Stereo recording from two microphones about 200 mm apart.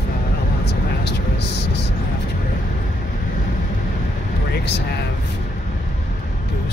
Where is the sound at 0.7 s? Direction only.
60° left (ahead or behind).